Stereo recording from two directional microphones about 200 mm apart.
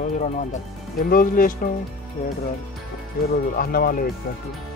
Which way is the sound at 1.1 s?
45° left (ahead or behind).